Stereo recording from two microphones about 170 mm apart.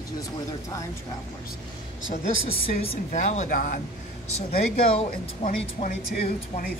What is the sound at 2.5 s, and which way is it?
A woman's voice, 40° left (ahead or behind).